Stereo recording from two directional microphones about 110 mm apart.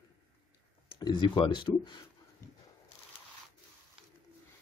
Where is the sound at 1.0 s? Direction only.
45° left (ahead or behind).